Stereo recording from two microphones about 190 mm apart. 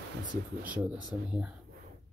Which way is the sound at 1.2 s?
5° right (ahead or behind).